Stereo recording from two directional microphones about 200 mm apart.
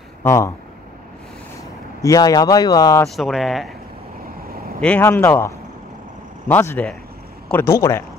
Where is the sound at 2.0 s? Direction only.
15° left (ahead or behind).